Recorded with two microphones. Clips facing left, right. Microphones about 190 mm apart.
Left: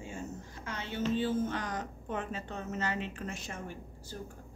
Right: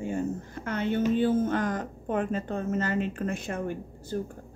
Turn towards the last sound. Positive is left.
turn(degrees=-55)  # may be behind; listen again after turning